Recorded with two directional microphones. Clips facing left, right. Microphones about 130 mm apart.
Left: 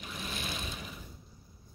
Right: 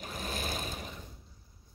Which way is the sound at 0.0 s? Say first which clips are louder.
Right 3 dB; 45° right (ahead or behind).